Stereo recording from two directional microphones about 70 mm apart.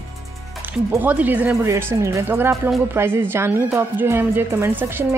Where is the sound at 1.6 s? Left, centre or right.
Right.